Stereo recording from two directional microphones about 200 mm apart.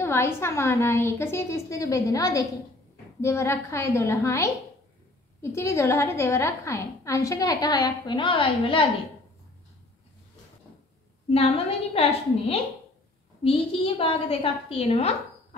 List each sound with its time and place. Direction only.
0.0 s a woman's voice: 10° left (ahead or behind)
11.3 s a woman's voice: 30° left (ahead or behind)